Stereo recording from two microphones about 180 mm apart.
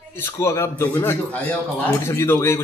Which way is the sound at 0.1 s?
15° left (ahead or behind).